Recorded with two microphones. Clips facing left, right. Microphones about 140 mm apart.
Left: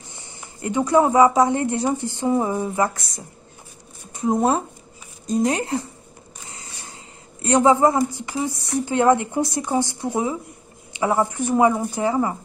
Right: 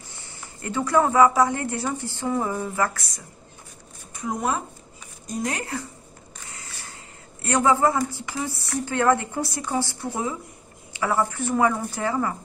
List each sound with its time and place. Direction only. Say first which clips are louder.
0.1 s speech: left 1 dB; 20° left (ahead or behind)
6.4 s a sound: left 2 dB; 20° left (ahead or behind)
7.4 s speech: left 4 dB; 20° left (ahead or behind)